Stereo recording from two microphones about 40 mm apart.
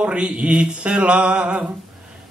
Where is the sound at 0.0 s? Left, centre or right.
Right.